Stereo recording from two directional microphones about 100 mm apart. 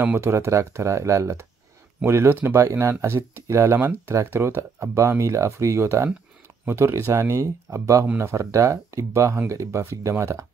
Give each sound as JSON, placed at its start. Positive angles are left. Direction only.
{"t": 0.0, "sound": "speech", "side_deg": -20}